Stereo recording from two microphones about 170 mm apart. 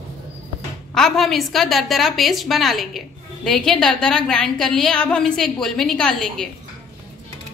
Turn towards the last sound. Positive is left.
turn(degrees=5)  # may be behind; listen again after turning